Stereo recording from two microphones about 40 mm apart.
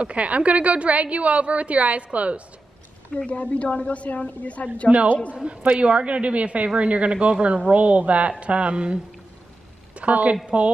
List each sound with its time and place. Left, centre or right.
0.0 s a woman's voice: right
3.3 s a woman's voice: left
4.9 s a woman's voice: right
9.9 s a woman's voice: right